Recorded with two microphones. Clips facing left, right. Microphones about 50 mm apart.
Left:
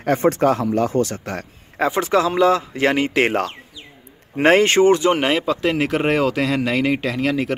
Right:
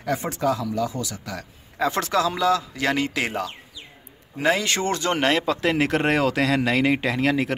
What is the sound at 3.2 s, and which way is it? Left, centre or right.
Speech, left.